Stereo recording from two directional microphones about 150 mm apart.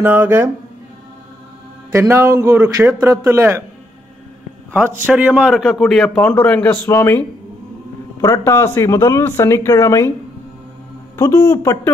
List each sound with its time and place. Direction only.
0.0 s a man's voice: 15° right (ahead or behind)
1.9 s a man's voice: 15° right (ahead or behind)
5.0 s a man's voice: 10° right (ahead or behind); by 10.1 s 20° left (ahead or behind)
11.1 s speech: 20° left (ahead or behind)